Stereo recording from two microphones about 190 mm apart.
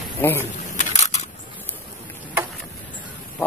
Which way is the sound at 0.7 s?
40° left (ahead or behind).